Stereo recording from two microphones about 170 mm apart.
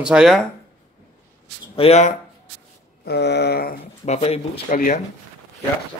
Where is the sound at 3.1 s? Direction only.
80° left.